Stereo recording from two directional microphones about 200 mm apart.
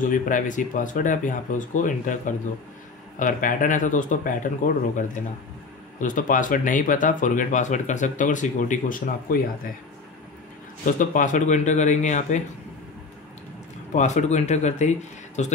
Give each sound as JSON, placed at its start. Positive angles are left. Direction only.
{"t": 0.0, "sound": "speech", "side_deg": 40}
{"t": 10.9, "sound": "speech", "side_deg": 40}
{"t": 13.9, "sound": "speech", "side_deg": 35}